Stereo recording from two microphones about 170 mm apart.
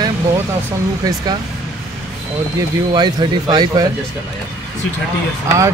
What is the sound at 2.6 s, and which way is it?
Speech, 25° right (ahead or behind).